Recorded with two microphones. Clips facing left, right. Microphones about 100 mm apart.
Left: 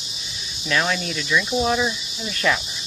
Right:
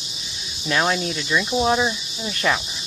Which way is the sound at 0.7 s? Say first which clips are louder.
Right 2 dB; 25° right (ahead or behind).